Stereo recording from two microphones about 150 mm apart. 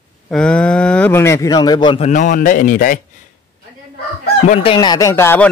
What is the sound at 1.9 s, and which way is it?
A man's voice, 55° left (ahead or behind).